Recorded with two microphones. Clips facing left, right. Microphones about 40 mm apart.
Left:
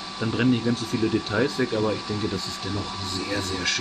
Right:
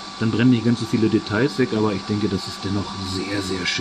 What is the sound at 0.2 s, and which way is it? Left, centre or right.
Speech, centre.